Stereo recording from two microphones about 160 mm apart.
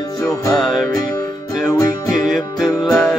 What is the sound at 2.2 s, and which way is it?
Music, centre (ahead or behind).